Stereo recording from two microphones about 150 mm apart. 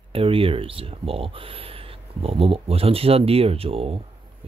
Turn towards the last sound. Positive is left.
turn(degrees=-40)  # may be behind; listen again after turning